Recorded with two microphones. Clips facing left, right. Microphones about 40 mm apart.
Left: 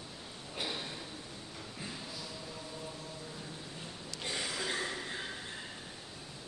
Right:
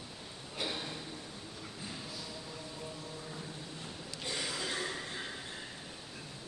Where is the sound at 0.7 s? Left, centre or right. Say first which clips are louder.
Right 1 dB; centre.